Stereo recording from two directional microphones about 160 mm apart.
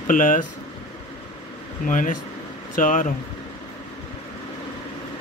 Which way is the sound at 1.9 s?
55° left (ahead or behind).